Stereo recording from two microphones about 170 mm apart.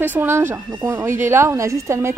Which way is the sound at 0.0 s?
10° right (ahead or behind).